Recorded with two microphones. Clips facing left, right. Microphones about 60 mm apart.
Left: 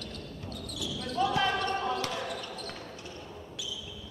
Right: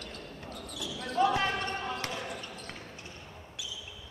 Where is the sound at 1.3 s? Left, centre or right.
Right.